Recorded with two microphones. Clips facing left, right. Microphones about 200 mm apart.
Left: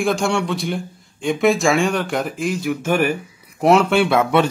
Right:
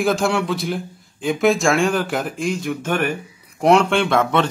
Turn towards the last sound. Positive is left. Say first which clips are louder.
# left 2 dB
turn(degrees=10)  # may be behind; listen again after turning